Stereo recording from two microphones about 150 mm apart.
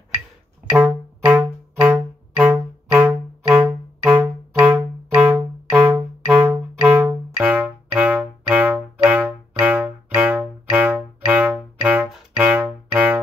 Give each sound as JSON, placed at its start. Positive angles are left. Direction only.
{"t": 0.7, "sound": "music", "side_deg": -10}